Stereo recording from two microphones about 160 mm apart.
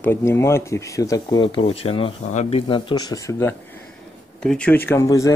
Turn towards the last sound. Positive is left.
turn(degrees=20)  # may be behind; listen again after turning